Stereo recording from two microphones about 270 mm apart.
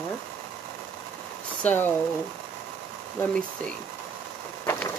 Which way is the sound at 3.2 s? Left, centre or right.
Centre.